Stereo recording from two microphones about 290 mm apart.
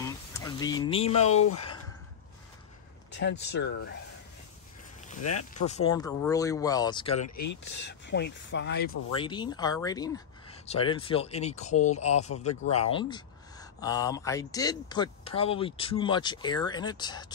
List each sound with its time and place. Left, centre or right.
0.0 s speech: centre
1.4 s speech: left
3.1 s speech: left
5.2 s speech: left
5.7 s speech: centre
7.2 s speech: left
7.8 s speech: left
9.1 s speech: centre